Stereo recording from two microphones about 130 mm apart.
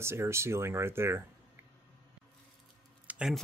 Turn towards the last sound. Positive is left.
turn(degrees=-10)  # may be behind; listen again after turning